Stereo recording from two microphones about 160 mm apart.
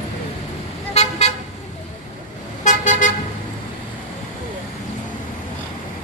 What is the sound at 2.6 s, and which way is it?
Vehicle, 50° left (ahead or behind).